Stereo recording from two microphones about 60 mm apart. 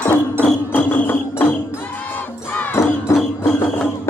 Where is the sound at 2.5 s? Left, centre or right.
Left.